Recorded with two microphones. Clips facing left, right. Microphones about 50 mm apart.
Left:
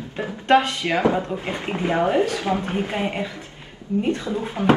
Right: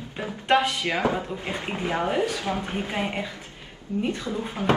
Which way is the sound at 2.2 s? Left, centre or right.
Left.